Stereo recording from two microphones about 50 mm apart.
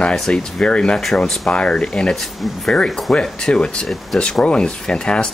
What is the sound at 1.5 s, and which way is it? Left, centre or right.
Speech, centre.